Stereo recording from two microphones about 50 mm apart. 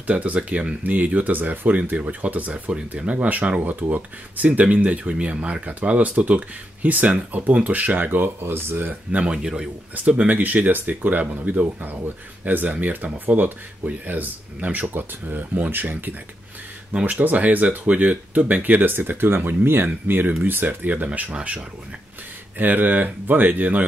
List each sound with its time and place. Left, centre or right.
0.0 s speech: right
8.4 s speech: right
9.1 s speech: right
9.9 s speech: right
17.0 s speech: right
22.6 s speech: right